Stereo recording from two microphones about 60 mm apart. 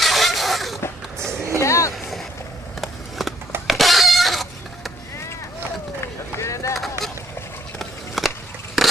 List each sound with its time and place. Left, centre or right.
0.0 s creak: centre
1.2 s a sound: right
1.6 s vehicle: left
2.8 s skateboard: centre
3.6 s a sound: centre
6.3 s run: left
7.8 s walk: centre